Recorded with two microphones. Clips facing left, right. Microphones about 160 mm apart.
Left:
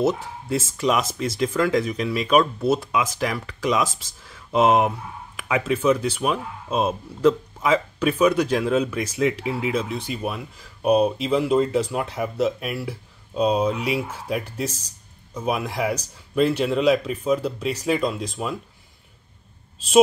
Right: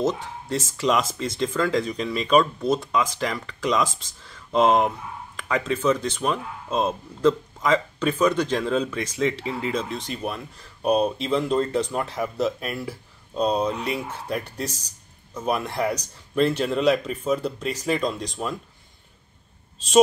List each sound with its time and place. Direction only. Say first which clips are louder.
0.0 s speech: left 3 dB; 10° left (ahead or behind)